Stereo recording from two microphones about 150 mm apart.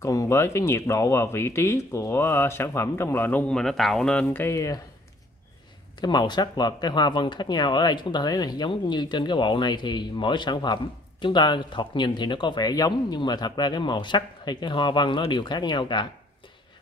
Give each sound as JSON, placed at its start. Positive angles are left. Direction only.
{"t": 0.0, "sound": "speech", "side_deg": 20}
{"t": 5.9, "sound": "speech", "side_deg": 30}